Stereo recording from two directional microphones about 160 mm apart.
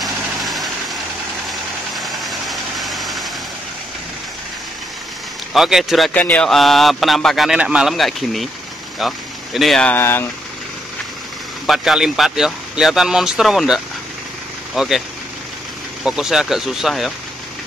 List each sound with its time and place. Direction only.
0.0 s vehicle: centre (ahead or behind)
5.5 s speech: centre (ahead or behind)
11.6 s speech: centre (ahead or behind)